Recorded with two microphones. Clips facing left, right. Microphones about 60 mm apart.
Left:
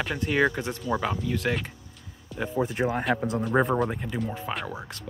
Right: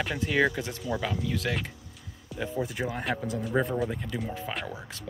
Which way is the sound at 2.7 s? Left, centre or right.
Left.